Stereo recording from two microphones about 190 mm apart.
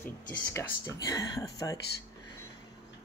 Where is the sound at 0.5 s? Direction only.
15° left (ahead or behind).